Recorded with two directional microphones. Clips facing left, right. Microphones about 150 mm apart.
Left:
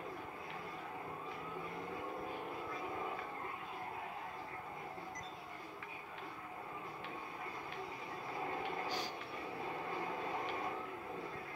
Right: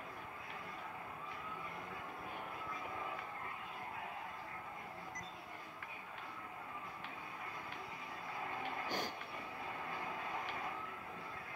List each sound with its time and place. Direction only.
8.8 s vehicle: 50° right (ahead or behind)